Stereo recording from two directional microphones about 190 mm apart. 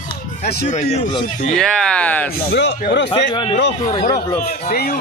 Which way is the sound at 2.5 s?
60° left (ahead or behind).